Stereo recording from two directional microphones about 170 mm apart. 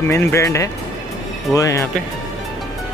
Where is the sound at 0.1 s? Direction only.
15° left (ahead or behind).